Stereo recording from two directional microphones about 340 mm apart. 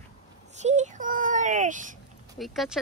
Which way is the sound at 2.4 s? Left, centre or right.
Centre.